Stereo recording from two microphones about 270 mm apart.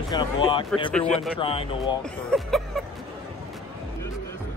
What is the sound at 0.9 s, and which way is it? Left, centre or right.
Speech, centre.